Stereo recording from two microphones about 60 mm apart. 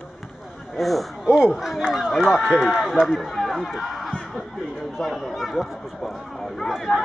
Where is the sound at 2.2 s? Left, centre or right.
Centre.